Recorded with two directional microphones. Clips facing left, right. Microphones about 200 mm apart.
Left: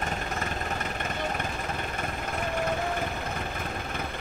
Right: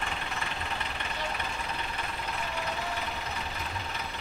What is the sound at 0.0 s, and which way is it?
Vehicle, 45° left (ahead or behind).